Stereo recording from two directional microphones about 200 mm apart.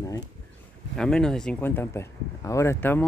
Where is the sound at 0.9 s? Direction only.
5° left (ahead or behind).